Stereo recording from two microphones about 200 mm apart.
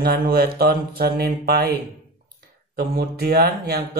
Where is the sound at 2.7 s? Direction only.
50° right (ahead or behind).